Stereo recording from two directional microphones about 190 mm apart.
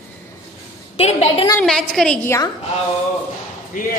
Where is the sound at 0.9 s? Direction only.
35° left (ahead or behind).